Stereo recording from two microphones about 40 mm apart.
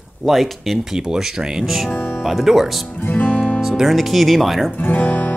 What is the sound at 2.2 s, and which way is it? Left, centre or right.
Speech, centre.